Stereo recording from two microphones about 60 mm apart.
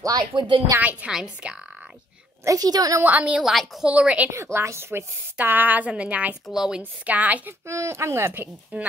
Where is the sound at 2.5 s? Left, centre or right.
Right.